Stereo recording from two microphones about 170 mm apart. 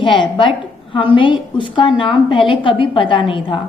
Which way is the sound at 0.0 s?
30° left (ahead or behind).